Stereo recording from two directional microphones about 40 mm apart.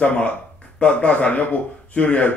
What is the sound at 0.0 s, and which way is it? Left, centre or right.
A man's voice, left.